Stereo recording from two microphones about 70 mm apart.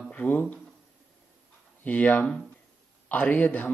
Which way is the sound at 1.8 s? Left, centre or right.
Left.